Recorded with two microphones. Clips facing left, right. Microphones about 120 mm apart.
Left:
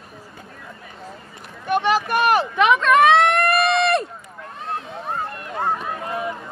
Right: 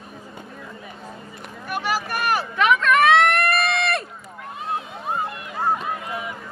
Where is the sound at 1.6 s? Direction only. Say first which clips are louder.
Left 6 dB; 25° left (ahead or behind).